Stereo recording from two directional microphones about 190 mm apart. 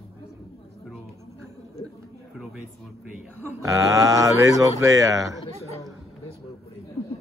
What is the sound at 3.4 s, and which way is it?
A man's voice, 15° right (ahead or behind).